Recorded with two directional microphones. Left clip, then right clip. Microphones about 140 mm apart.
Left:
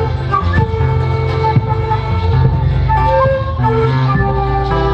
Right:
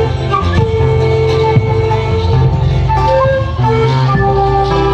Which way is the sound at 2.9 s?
45° right (ahead or behind).